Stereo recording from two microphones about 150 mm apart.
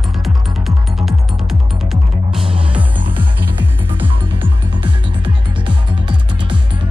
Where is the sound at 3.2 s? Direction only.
10° right (ahead or behind).